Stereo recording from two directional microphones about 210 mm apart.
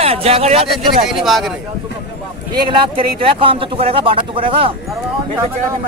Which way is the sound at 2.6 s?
25° right (ahead or behind).